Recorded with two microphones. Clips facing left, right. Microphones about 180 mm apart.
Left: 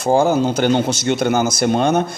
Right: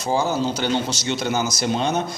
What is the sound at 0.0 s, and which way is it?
Speech, 50° left (ahead or behind).